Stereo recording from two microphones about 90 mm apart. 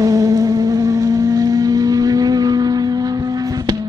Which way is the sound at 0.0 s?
40° right (ahead or behind).